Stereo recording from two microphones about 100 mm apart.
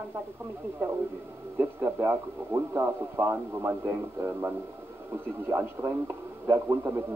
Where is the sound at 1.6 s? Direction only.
20° right (ahead or behind).